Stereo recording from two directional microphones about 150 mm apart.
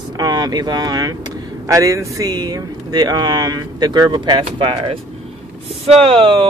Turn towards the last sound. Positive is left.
turn(degrees=-40)  # may be behind; listen again after turning